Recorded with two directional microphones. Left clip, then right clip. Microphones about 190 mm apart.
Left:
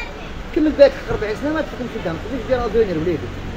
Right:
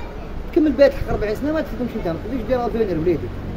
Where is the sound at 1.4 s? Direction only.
35° right (ahead or behind).